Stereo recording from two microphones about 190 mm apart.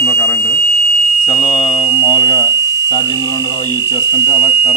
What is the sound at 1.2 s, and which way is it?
Speech, 30° left (ahead or behind).